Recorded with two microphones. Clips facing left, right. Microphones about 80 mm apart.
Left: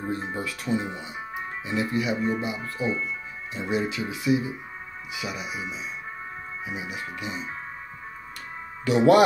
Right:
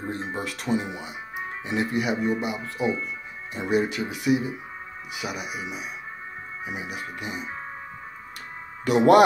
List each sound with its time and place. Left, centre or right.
0.4 s speech: right
0.7 s speech: centre
1.7 s speech: right
3.5 s speech: right
8.8 s speech: right